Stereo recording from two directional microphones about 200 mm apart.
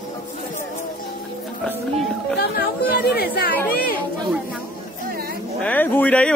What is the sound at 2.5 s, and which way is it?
Music, 50° left (ahead or behind).